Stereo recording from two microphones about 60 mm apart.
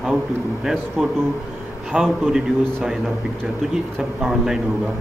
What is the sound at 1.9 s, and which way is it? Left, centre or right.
Speech, right.